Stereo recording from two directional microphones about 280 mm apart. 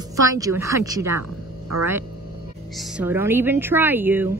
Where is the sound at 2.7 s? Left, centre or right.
Centre.